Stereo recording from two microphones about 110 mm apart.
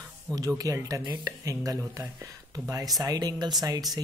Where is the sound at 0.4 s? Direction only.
30° right (ahead or behind).